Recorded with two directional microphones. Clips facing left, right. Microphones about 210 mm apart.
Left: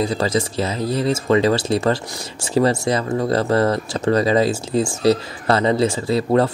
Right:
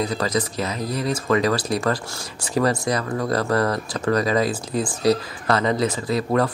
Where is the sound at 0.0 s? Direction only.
25° left (ahead or behind).